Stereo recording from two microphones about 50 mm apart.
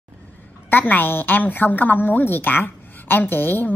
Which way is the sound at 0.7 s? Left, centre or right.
Left.